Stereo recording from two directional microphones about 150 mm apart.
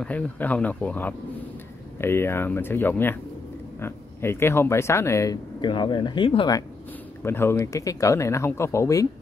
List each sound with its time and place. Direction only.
0.0 s speech: 10° left (ahead or behind); by 6.6 s 30° left (ahead or behind)
7.2 s speech: 15° left (ahead or behind)